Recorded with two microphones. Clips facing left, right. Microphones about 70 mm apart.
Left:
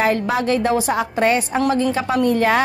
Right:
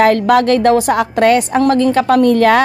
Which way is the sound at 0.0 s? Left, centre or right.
Right.